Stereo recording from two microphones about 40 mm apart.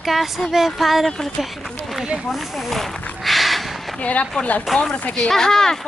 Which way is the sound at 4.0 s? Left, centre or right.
Left.